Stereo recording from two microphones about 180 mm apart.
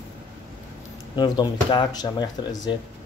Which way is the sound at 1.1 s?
25° left (ahead or behind).